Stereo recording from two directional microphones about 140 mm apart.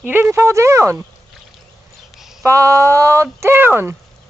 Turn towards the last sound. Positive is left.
turn(degrees=-15)  # may be behind; listen again after turning